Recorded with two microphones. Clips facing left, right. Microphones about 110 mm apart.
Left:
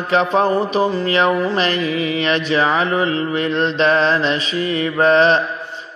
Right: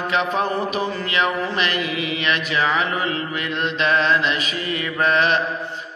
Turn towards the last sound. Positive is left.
turn(degrees=30)  # may be behind; listen again after turning